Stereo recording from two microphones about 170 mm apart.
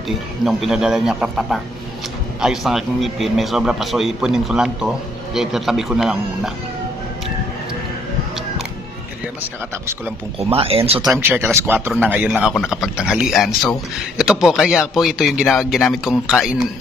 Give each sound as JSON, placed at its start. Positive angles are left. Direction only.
{"t": 0.5, "sound": "a man's voice", "side_deg": 0}
{"t": 10.4, "sound": "speech", "side_deg": -35}
{"t": 11.1, "sound": "a man's voice", "side_deg": -10}